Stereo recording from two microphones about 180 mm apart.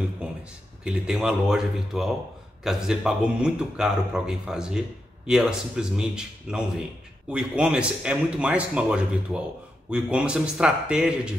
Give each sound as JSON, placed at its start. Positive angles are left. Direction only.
{"t": 0.2, "sound": "a man's voice", "side_deg": -5}